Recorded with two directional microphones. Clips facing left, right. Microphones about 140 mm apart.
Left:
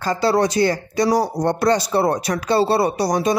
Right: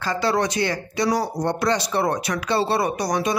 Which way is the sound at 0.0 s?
35° left (ahead or behind).